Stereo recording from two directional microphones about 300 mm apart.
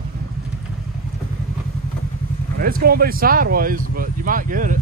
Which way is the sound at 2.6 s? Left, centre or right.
Right.